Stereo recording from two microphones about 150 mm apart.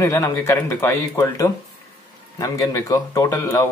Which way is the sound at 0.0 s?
20° left (ahead or behind).